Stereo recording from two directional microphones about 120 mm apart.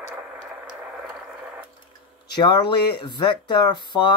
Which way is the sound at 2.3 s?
40° left (ahead or behind).